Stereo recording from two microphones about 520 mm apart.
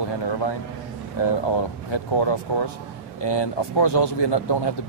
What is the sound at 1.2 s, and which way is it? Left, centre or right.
A man's voice, left.